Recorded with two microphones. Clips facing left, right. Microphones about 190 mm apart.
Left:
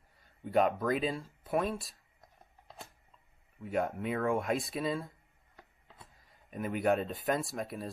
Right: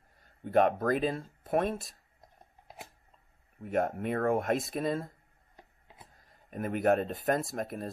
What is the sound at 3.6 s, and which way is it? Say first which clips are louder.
Speech: right 3 dB; 50° right (ahead or behind).